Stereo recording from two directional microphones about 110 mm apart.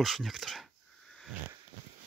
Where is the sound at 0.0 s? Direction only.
Centre (ahead or behind).